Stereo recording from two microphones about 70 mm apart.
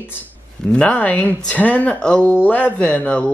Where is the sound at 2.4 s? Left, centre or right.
Left.